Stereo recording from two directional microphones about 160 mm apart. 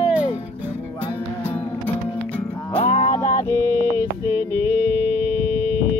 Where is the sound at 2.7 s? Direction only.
30° left (ahead or behind).